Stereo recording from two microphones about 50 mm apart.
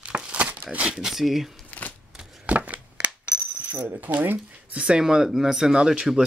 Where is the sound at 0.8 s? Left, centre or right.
Centre.